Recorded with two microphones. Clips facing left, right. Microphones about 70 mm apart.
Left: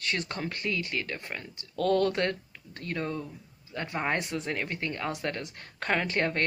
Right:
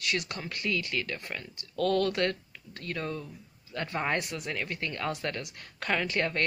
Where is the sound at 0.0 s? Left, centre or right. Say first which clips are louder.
Left 1 dB; left.